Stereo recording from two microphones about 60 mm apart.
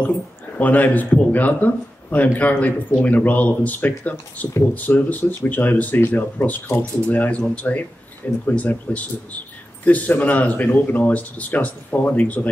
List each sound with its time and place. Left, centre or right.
0.6 s speech: left